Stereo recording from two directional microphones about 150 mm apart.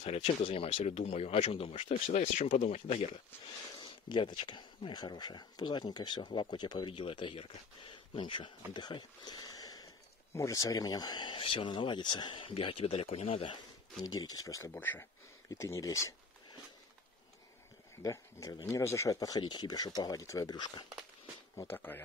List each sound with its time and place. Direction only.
0.0 s speech: 45° left (ahead or behind)
3.7 s speech: 35° left (ahead or behind)
14.0 s speech: 25° left (ahead or behind)
18.0 s speech: 20° left (ahead or behind)
21.5 s speech: 15° left (ahead or behind)